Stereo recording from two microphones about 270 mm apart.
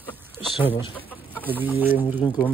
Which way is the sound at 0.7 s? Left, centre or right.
Centre.